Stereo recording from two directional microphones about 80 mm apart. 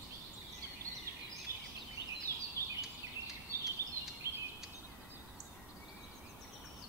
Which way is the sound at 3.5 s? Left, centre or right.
Right.